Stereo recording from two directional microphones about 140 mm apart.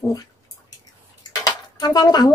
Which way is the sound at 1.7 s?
30° left (ahead or behind).